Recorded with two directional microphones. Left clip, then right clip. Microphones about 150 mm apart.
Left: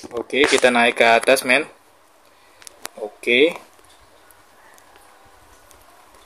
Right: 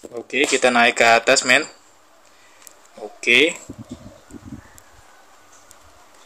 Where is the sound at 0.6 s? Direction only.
5° left (ahead or behind).